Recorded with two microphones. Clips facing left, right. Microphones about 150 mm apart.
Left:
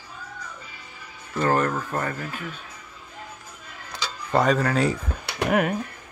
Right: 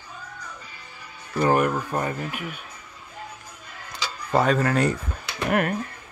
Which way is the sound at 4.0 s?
5° right (ahead or behind).